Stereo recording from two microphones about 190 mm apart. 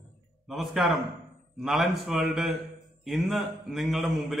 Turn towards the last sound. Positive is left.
turn(degrees=0)  # may be behind; listen again after turning